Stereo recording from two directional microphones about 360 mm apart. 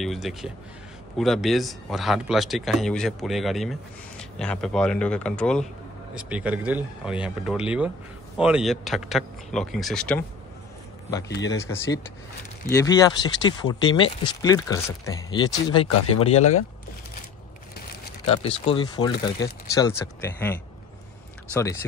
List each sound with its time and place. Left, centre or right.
0.0 s speech: centre
18.2 s speech: centre